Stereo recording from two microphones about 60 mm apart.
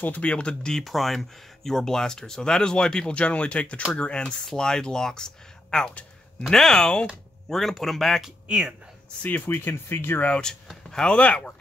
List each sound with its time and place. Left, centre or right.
0.0 s speech: left
0.8 s speech: centre
6.8 s speech: centre
7.4 s speech: centre
9.5 s speech: left
10.2 s speech: centre